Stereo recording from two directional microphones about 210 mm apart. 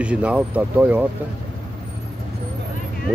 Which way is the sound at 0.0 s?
5° right (ahead or behind).